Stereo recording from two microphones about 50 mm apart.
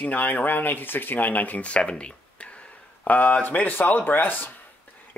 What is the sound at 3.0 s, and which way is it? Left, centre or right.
Speech, left.